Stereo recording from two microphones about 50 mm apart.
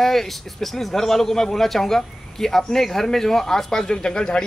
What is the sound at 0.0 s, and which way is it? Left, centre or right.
Speech, centre.